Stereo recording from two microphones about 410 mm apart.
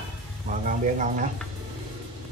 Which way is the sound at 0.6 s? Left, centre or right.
Centre.